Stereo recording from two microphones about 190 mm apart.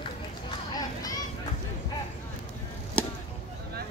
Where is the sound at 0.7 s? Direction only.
20° left (ahead or behind).